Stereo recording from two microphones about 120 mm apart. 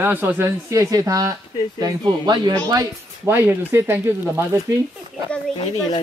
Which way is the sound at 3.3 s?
20° right (ahead or behind).